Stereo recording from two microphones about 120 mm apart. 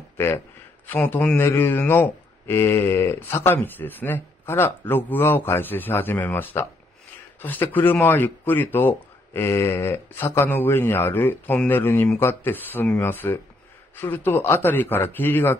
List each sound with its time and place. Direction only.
0.8 s a man's voice: 15° left (ahead or behind)